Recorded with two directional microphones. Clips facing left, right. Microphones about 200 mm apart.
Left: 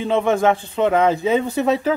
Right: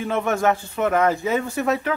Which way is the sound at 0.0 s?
15° left (ahead or behind).